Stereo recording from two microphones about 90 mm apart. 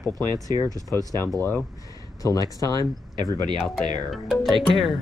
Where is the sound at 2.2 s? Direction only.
35° left (ahead or behind).